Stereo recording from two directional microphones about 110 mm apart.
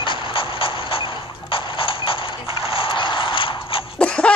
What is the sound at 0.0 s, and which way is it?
Clip-clop, 50° left (ahead or behind).